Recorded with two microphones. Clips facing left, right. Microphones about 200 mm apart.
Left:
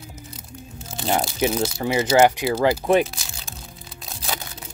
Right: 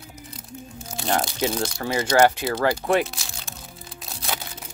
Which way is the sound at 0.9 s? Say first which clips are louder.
Left 1 dB; centre (ahead or behind).